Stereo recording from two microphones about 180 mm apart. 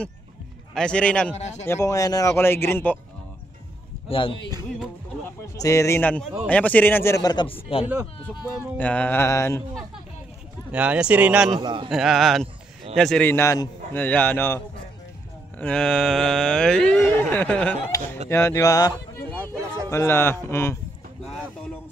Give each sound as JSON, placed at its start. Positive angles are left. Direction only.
{"t": 0.7, "sound": "a sound", "side_deg": 5}
{"t": 1.3, "sound": "speech", "side_deg": 40}
{"t": 1.7, "sound": "a man's voice", "side_deg": 15}
{"t": 4.1, "sound": "speech", "side_deg": 30}
{"t": 5.2, "sound": "a man's voice", "side_deg": 15}
{"t": 8.7, "sound": "a man's voice", "side_deg": 10}
{"t": 10.7, "sound": "speech", "side_deg": -5}
{"t": 11.5, "sound": "a man's voice", "side_deg": -30}
{"t": 11.9, "sound": "a sound", "side_deg": 0}
{"t": 12.9, "sound": "a man's voice", "side_deg": 5}
{"t": 15.6, "sound": "a sound", "side_deg": 5}
{"t": 18.3, "sound": "a man's voice", "side_deg": 15}